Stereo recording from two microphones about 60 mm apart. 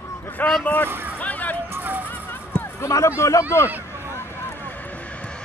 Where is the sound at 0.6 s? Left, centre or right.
Left.